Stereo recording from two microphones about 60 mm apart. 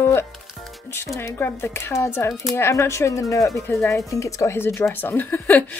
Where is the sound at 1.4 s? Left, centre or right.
Left.